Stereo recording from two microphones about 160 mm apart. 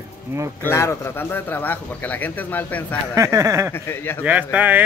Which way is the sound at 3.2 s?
20° right (ahead or behind).